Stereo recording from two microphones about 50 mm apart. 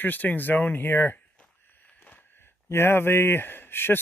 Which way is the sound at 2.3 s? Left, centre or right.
Left.